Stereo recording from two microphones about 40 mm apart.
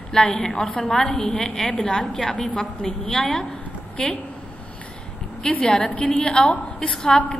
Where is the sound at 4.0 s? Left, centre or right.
Centre.